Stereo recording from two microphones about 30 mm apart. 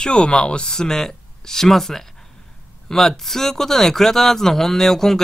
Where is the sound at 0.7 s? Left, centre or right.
Centre.